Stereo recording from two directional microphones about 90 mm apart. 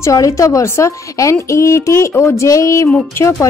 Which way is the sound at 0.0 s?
35° left (ahead or behind).